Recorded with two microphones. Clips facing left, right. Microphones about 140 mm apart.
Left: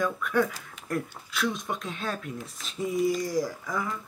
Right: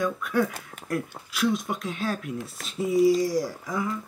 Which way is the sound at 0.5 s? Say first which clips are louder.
Right 2 dB; 55° right (ahead or behind).